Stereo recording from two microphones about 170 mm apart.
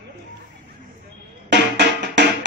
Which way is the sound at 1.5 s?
90° right.